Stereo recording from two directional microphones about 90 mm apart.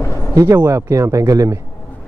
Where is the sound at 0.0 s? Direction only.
30° left (ahead or behind).